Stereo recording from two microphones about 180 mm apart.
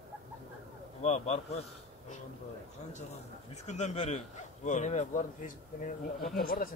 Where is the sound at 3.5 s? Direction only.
40° left (ahead or behind).